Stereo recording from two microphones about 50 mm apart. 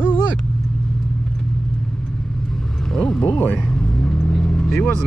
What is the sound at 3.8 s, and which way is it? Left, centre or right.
Vehicle, centre.